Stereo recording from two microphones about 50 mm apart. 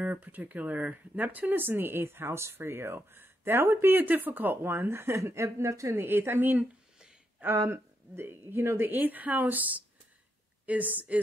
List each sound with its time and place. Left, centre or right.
0.0 s speech: right
3.9 s speech: right
5.9 s speech: right
7.5 s speech: right
8.8 s speech: right